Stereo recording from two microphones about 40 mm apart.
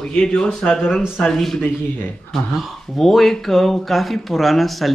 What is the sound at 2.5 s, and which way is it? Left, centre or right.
Speech, centre.